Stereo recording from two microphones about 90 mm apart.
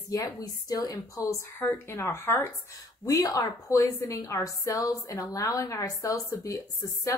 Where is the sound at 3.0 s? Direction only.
40° left (ahead or behind).